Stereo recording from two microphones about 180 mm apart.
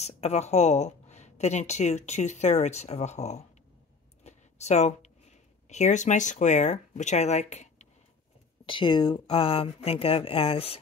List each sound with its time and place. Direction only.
0.0 s speech: 35° left (ahead or behind)
4.2 s a sound: 40° left (ahead or behind)
5.7 s speech: 40° left (ahead or behind)
8.6 s speech: 25° left (ahead or behind)